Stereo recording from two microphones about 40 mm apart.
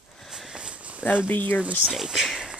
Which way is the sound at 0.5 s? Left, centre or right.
Right.